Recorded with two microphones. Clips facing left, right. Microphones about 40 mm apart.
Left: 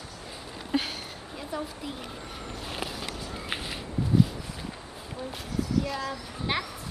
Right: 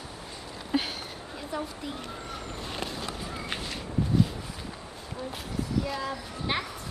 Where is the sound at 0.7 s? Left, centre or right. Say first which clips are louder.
Even; centre.